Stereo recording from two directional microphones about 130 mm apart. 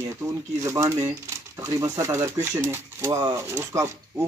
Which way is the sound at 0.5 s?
25° right (ahead or behind).